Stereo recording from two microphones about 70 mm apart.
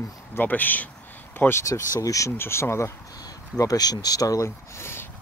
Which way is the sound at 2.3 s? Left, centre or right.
Left.